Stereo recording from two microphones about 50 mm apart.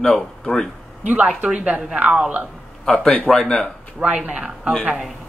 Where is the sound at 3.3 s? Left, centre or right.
Centre.